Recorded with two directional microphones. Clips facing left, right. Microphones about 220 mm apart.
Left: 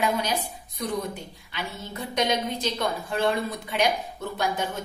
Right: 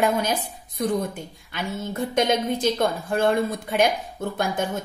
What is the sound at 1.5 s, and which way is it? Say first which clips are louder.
A woman's voice: right 6 dB; 50° right (ahead or behind).